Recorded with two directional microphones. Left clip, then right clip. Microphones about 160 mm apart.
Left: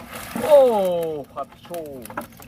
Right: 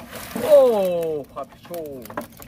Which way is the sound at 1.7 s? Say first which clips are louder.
Right 1 dB; 25° right (ahead or behind).